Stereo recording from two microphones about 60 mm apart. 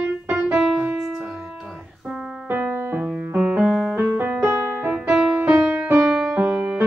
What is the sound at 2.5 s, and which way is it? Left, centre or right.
Music, right.